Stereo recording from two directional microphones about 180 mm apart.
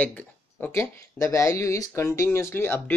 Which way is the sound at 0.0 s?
10° left (ahead or behind).